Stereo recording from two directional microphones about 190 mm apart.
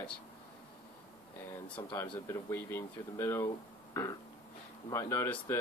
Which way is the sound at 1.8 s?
20° left (ahead or behind).